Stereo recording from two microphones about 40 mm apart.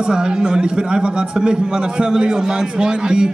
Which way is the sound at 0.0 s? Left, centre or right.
Centre.